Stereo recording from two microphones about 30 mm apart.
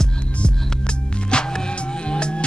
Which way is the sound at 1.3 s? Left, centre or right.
Left.